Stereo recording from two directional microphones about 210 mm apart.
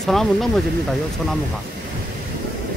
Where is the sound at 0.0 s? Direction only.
Centre (ahead or behind).